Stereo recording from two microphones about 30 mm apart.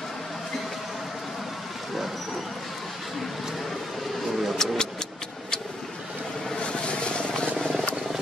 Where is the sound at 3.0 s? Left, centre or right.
Centre.